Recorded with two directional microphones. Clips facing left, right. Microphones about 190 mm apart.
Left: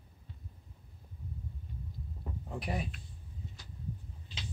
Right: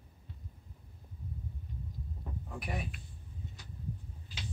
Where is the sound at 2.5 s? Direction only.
30° left (ahead or behind).